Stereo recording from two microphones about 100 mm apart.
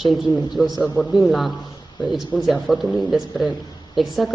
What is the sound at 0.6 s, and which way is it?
Speech, 15° left (ahead or behind).